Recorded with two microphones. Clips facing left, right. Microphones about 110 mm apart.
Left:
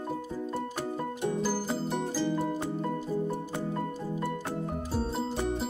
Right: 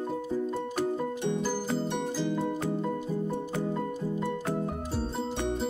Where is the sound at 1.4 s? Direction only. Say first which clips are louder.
Right 1 dB; 5° left (ahead or behind).